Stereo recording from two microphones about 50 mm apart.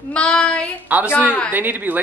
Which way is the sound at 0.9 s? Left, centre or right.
Right.